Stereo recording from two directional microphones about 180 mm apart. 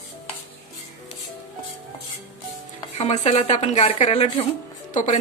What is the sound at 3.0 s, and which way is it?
A woman's voice, 35° left (ahead or behind).